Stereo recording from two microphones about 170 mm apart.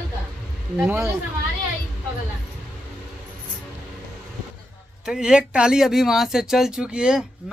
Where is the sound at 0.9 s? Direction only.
15° right (ahead or behind).